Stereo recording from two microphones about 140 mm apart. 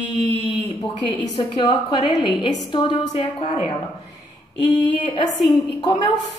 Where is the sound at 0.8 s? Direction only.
35° left (ahead or behind).